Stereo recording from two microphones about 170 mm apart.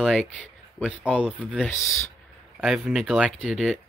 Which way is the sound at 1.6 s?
15° left (ahead or behind).